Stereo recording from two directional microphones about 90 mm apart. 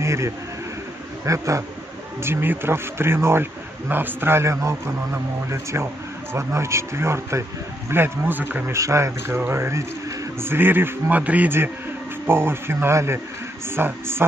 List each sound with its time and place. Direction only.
0.0 s a man's voice: 30° right (ahead or behind)
2.2 s a man's voice: 25° right (ahead or behind)
8.7 s a man's voice: 35° right (ahead or behind)